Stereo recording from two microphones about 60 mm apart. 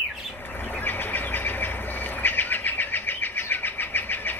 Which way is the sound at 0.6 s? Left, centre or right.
Left.